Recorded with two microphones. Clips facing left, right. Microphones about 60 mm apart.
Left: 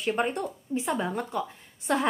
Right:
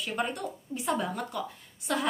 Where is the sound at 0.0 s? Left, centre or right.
Left.